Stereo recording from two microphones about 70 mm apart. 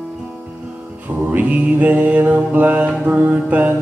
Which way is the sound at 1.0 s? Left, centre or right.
Right.